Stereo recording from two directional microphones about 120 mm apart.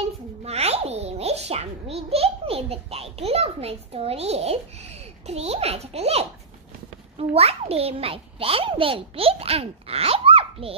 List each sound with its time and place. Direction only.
0.4 s a child's voice: 60° right (ahead or behind)